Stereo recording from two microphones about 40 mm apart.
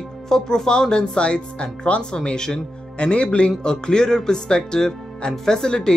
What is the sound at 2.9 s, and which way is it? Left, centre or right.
Speech, left.